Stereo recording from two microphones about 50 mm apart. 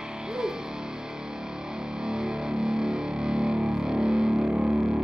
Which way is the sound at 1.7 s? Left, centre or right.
Centre.